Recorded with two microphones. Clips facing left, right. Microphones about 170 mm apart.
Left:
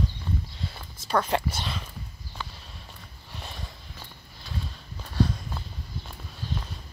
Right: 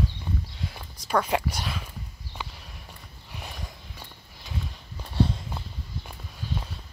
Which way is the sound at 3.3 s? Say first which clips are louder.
Right 1 dB; 10° right (ahead or behind).